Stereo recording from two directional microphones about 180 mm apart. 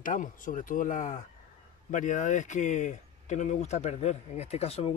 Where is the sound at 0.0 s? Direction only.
45° left (ahead or behind).